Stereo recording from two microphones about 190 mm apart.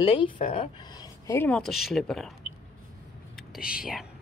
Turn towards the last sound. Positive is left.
turn(degrees=-5)  # may be behind; listen again after turning